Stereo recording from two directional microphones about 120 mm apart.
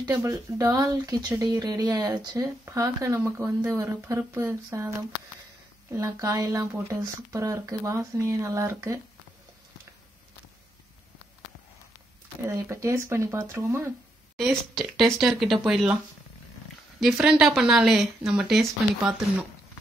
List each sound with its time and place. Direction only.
0.0 s speech: 25° right (ahead or behind)
5.9 s speech: 30° right (ahead or behind)
12.4 s speech: 20° right (ahead or behind)
14.3 s speech: centre (ahead or behind)
17.0 s speech: 5° right (ahead or behind)